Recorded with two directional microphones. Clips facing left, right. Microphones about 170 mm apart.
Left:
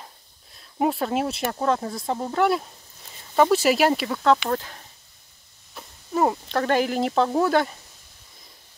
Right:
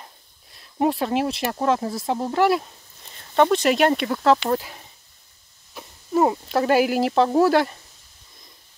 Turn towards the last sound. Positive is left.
turn(degrees=0)  # may be behind; listen again after turning